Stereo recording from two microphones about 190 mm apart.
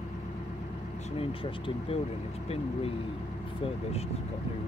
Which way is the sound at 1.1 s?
30° left (ahead or behind).